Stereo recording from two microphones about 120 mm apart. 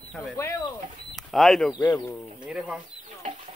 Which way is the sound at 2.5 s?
5° right (ahead or behind).